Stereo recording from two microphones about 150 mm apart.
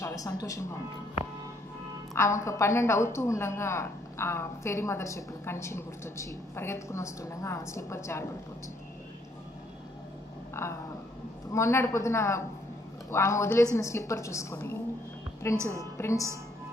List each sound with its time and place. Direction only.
0.0 s a woman's voice: 25° left (ahead or behind)
2.1 s a woman's voice: 20° left (ahead or behind)
10.6 s a woman's voice: 20° left (ahead or behind)
15.5 s a woman's voice: 20° right (ahead or behind)
15.8 s a woman's voice: 20° left (ahead or behind)